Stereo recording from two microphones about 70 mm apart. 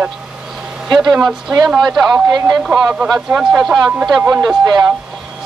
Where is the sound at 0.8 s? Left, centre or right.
Centre.